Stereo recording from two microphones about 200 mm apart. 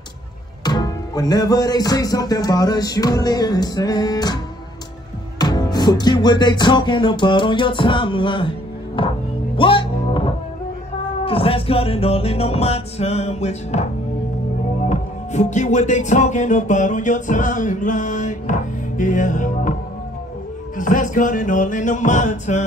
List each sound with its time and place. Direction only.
0.7 s music: 20° left (ahead or behind)
5.4 s music: 20° left (ahead or behind); by 19.7 s 40° left (ahead or behind)
20.7 s music: 40° left (ahead or behind)